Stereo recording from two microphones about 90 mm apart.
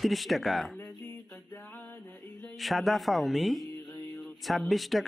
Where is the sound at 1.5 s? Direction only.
20° left (ahead or behind).